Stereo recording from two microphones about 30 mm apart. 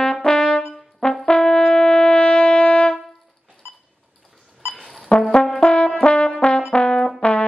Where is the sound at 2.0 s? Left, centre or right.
Left.